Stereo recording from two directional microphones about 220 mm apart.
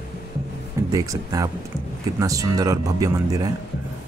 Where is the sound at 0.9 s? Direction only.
15° right (ahead or behind).